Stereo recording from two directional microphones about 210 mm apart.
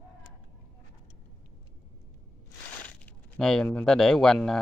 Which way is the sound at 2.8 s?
5° left (ahead or behind).